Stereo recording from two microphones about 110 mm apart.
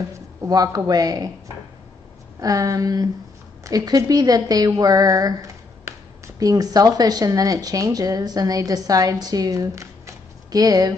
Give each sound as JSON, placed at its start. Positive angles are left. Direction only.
{"t": 0.5, "sound": "speech", "side_deg": -35}
{"t": 2.4, "sound": "a woman's voice", "side_deg": -30}